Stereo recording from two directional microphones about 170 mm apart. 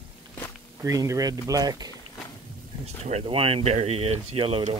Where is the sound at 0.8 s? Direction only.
20° right (ahead or behind).